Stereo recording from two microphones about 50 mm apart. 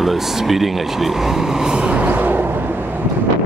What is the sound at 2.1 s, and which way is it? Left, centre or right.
Vehicle, right.